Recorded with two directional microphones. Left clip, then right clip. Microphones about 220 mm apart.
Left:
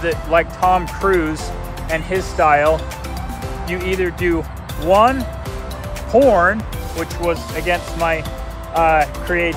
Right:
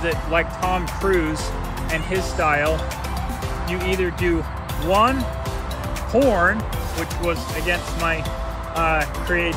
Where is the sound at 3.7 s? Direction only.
20° left (ahead or behind).